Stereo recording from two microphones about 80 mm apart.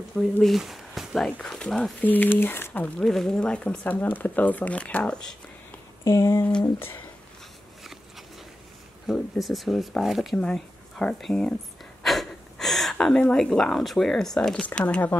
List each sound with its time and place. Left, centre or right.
0.4 s speech: centre
2.0 s speech: left
3.0 s speech: centre
6.0 s a sound: left
6.6 s speech: left
9.0 s speech: centre
12.0 s gasp: centre
12.9 s speech: centre